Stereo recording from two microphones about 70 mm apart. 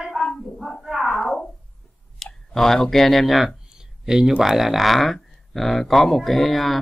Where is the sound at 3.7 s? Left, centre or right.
Centre.